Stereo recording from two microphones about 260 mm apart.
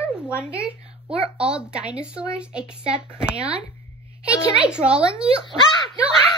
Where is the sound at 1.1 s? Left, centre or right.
Right.